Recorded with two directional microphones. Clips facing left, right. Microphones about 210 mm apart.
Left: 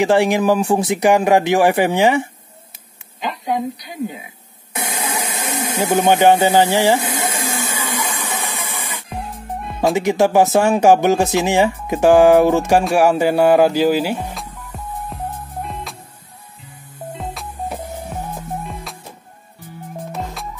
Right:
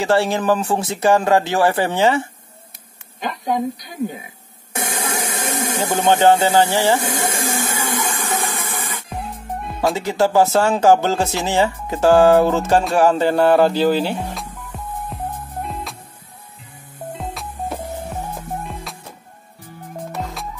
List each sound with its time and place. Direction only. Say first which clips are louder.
0.0 s speech: left 3 dB; 15° left (ahead or behind)
3.2 s a woman's voice: even; 45° right (ahead or behind)
4.7 s a sound: even; 50° right (ahead or behind)
6.2 s speech: even; 20° left (ahead or behind)
7.0 s a sound: even; 50° right (ahead or behind)
9.1 s music: left 1 dB; centre (ahead or behind)
9.9 s speech: left 2 dB; 15° left (ahead or behind); by 15.1 s centre (ahead or behind)
15.6 s music: right 1 dB; centre (ahead or behind)
17.1 s music: even; centre (ahead or behind)